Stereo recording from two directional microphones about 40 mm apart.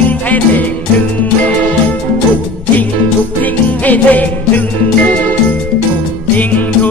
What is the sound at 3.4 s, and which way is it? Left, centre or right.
Music, left.